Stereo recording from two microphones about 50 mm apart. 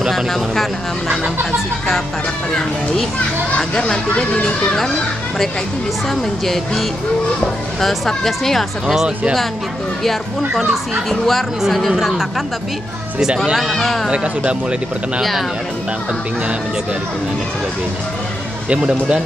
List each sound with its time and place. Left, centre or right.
0.1 s speech: centre
3.5 s speech: left
6.0 s speech: centre
10.5 s speech: centre
13.7 s speech: centre
14.1 s speech: right
18.7 s speech: centre